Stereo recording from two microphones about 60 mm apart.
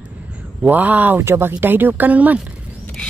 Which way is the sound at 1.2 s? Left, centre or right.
Right.